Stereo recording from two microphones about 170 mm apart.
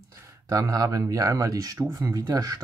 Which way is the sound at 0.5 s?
20° right (ahead or behind).